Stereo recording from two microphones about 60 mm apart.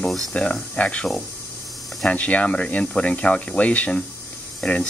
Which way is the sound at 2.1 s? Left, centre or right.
Left.